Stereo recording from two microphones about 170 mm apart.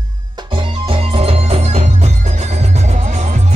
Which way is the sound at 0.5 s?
30° right (ahead or behind).